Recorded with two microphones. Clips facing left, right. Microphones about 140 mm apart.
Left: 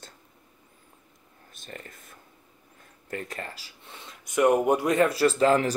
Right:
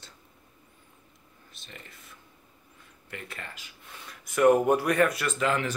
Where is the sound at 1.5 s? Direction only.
45° left (ahead or behind).